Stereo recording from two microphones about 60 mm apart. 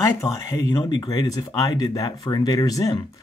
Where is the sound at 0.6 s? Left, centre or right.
Left.